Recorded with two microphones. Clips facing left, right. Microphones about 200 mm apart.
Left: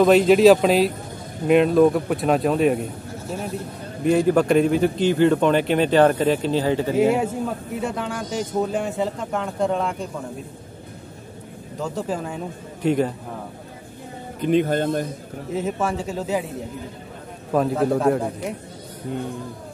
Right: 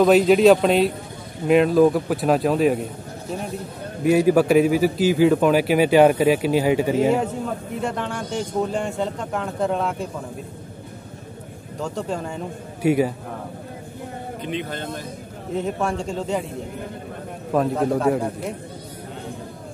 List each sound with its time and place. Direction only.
0.0 s a man's voice: centre (ahead or behind)
7.8 s a man's voice: centre (ahead or behind)
11.8 s a man's voice: centre (ahead or behind)
12.8 s a man's voice: 10° right (ahead or behind)
14.4 s speech: 45° left (ahead or behind)
15.5 s a man's voice: 5° left (ahead or behind)
17.5 s a man's voice: centre (ahead or behind)